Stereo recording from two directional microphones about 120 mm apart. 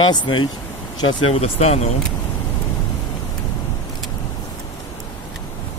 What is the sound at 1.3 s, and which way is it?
Speech, 65° left (ahead or behind).